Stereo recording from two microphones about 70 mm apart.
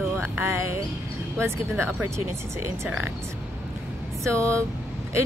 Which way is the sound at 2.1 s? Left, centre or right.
Right.